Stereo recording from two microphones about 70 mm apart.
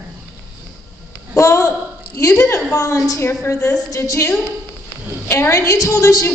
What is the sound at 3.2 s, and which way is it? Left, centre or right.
Speech, left.